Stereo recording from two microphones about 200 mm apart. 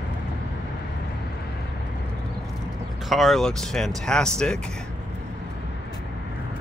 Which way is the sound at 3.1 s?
Centre (ahead or behind).